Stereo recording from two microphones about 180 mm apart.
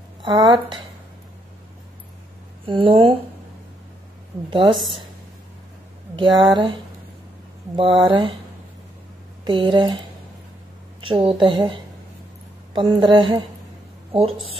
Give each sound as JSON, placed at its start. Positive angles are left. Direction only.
{"t": 0.2, "sound": "a woman's voice", "side_deg": -25}
{"t": 2.6, "sound": "a woman's voice", "side_deg": -30}
{"t": 4.5, "sound": "a woman's voice", "side_deg": -30}
{"t": 6.1, "sound": "a woman's voice", "side_deg": -25}
{"t": 7.7, "sound": "a woman's voice", "side_deg": -25}
{"t": 9.4, "sound": "a woman's voice", "side_deg": -25}
{"t": 11.0, "sound": "a woman's voice", "side_deg": -30}